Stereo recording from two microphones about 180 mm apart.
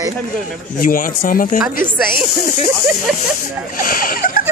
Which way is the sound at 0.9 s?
50° left (ahead or behind).